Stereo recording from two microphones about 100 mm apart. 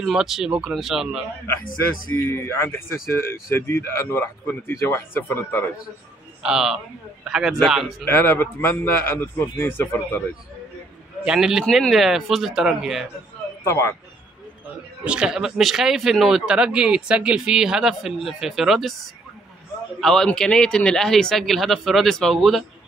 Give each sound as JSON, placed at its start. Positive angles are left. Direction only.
{"t": 0.0, "sound": "speech", "side_deg": -5}
{"t": 1.5, "sound": "a man's voice", "side_deg": 25}
{"t": 6.4, "sound": "speech", "side_deg": -5}
{"t": 8.0, "sound": "a man's voice", "side_deg": 20}
{"t": 11.2, "sound": "speech", "side_deg": -5}
{"t": 13.7, "sound": "a man's voice", "side_deg": 25}
{"t": 15.0, "sound": "speech", "side_deg": -5}
{"t": 20.0, "sound": "speech", "side_deg": 5}